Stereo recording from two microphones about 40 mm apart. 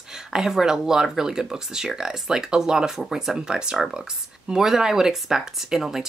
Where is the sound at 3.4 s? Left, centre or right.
Right.